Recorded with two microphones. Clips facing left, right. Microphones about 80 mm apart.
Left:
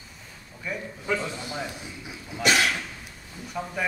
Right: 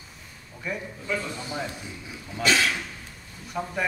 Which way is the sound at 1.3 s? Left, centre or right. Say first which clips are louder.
Right 1 dB; centre.